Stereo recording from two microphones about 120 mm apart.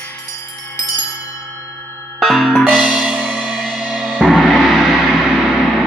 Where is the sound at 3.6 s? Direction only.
Centre (ahead or behind).